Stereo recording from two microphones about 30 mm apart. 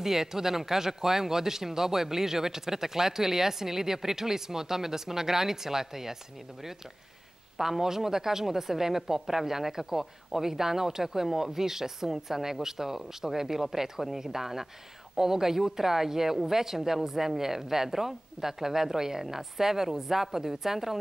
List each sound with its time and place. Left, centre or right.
0.0 s speech: centre
7.5 s speech: centre